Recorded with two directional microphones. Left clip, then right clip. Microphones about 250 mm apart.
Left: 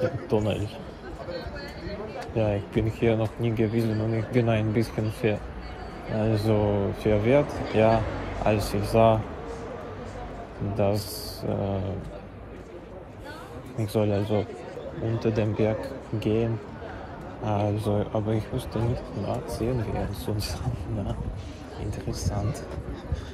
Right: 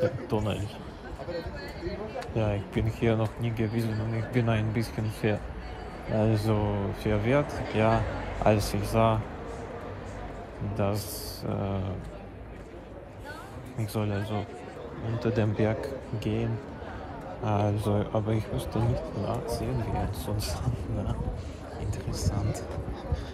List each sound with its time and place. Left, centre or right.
0.3 s speech: centre
2.3 s speech: centre
6.5 s speech: centre
8.5 s speech: centre
11.4 s speech: centre
13.9 s speech: centre
15.1 s speech: centre
17.5 s speech: centre
22.1 s speech: centre